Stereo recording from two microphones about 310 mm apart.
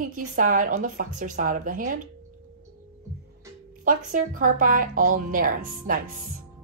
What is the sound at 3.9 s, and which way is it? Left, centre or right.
A woman's voice, right.